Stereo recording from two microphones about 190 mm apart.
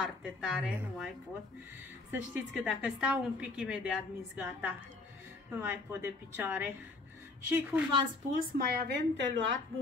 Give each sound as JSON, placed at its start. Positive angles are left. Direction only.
{"t": 0.0, "sound": "a woman's voice", "side_deg": 0}
{"t": 8.4, "sound": "speech", "side_deg": -50}
{"t": 9.1, "sound": "a woman's voice", "side_deg": -75}